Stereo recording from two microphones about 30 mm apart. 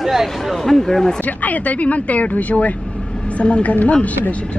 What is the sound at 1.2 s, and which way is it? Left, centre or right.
Speech, left.